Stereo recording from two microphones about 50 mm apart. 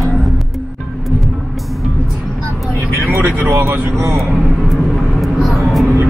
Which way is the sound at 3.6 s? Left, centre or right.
Right.